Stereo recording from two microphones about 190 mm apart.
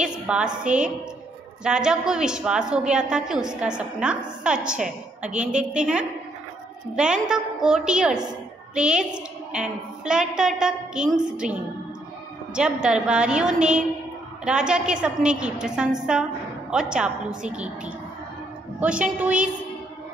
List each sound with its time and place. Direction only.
0.0 s a sound: 5° right (ahead or behind)
0.7 s a woman's voice: 5° right (ahead or behind)
12.5 s a woman's voice: 5° right (ahead or behind)